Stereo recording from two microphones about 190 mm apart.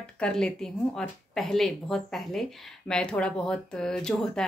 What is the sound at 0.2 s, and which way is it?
Speech, 5° left (ahead or behind).